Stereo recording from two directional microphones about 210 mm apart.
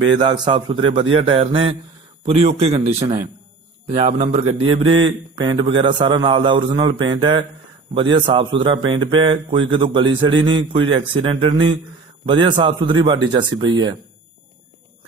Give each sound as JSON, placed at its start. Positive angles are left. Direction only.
{"t": 0.2, "sound": "speech", "side_deg": -20}